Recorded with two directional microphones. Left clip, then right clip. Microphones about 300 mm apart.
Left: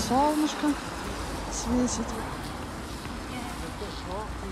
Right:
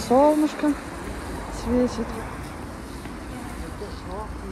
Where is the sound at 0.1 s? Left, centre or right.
Left.